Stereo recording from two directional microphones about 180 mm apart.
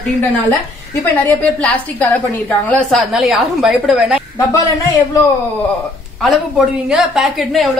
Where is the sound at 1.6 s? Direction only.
10° left (ahead or behind).